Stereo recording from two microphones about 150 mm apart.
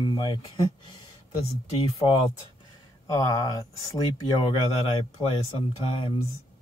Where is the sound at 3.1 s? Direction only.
25° left (ahead or behind).